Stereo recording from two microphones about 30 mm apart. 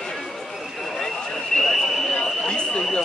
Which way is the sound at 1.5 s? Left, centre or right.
Left.